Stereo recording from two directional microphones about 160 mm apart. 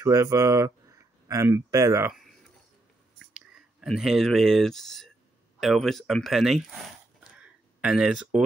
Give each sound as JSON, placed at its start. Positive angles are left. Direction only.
{"t": 0.0, "sound": "speech", "side_deg": -20}
{"t": 3.2, "sound": "speech", "side_deg": 0}
{"t": 7.3, "sound": "a sound", "side_deg": -5}